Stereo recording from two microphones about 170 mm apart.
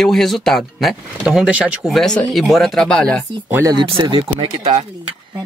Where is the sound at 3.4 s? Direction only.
10° right (ahead or behind).